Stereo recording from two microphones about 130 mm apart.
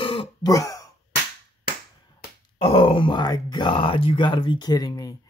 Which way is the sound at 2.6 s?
45° left (ahead or behind).